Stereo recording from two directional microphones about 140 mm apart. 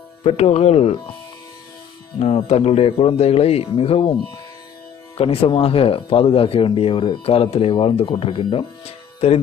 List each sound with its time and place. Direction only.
0.2 s speech: 50° left (ahead or behind)
2.1 s speech: 45° left (ahead or behind)